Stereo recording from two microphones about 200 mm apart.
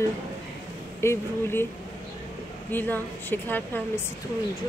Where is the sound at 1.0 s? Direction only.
10° left (ahead or behind).